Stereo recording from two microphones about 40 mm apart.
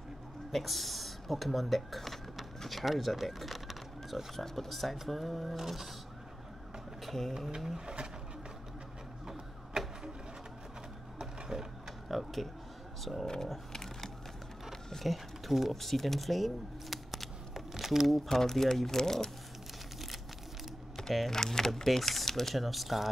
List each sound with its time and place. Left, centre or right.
0.5 s speech: centre
7.1 s speech: centre
7.8 s speech: right
9.3 s a sound: centre
11.1 s a sound: centre
12.1 s speech: centre
13.3 s a sound: centre
14.7 s speech: centre
18.4 s speech: centre
21.3 s speech: centre